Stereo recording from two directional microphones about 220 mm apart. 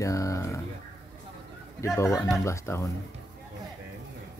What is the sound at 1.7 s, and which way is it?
Speech, 15° left (ahead or behind).